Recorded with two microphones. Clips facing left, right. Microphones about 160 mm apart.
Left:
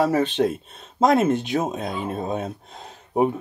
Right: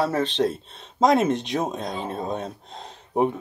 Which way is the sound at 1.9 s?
50° left (ahead or behind).